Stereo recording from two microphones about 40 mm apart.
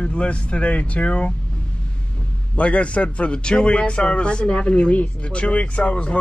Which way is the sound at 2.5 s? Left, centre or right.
Left.